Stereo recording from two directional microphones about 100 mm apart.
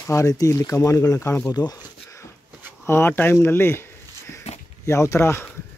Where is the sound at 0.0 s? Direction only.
35° left (ahead or behind).